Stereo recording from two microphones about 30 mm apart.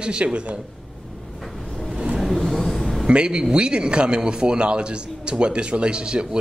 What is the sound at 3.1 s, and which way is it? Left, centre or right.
Speech, right.